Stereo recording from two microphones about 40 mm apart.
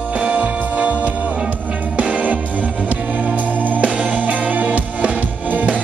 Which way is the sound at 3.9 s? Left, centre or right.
Right.